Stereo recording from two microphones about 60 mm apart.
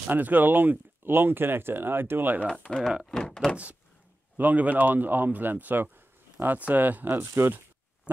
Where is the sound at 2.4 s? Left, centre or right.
Centre.